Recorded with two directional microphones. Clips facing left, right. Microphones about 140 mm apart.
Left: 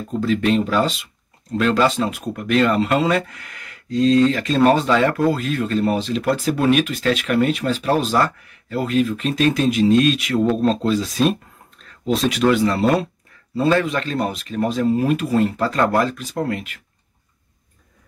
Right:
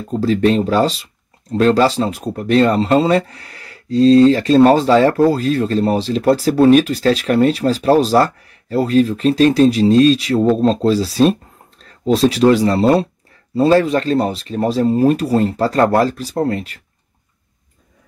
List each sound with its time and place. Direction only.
0.1 s speech: 35° right (ahead or behind)